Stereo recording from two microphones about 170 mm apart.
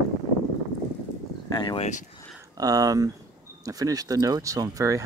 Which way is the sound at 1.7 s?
45° left (ahead or behind).